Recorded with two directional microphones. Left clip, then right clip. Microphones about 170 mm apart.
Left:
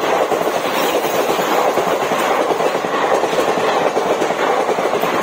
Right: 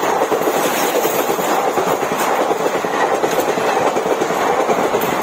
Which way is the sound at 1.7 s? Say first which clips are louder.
Left 1 dB; 60° right (ahead or behind).